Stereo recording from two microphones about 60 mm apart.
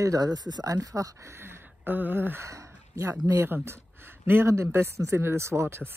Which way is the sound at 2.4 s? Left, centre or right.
Right.